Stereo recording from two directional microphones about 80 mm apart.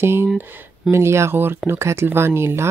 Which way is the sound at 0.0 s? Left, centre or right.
Right.